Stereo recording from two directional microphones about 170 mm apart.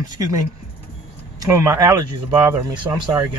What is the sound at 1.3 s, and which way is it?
Speech, 20° right (ahead or behind).